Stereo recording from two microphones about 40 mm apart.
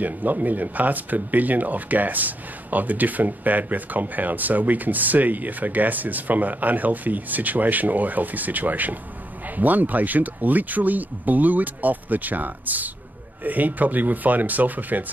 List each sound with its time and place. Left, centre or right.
0.0 s speech: right